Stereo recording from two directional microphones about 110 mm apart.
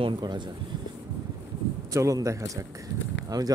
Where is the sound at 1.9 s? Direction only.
30° right (ahead or behind).